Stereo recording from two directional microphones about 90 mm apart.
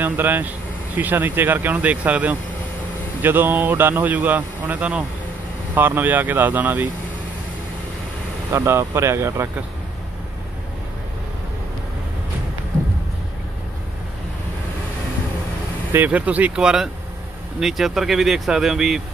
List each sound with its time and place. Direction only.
0.0 s a man's voice: 20° right (ahead or behind)
8.5 s speech: 30° right (ahead or behind)
15.9 s speech: 20° right (ahead or behind); by 18.9 s 5° right (ahead or behind)